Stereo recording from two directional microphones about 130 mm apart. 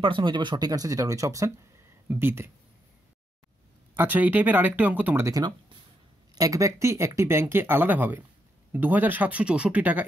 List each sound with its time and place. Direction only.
0.0 s speech: 40° right (ahead or behind); by 2.5 s 20° right (ahead or behind)
3.9 s speech: 15° right (ahead or behind)